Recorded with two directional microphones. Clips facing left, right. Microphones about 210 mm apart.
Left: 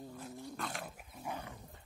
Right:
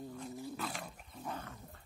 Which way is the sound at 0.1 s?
Centre (ahead or behind).